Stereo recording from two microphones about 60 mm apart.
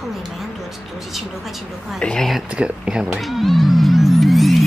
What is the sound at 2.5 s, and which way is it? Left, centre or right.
Speech, centre.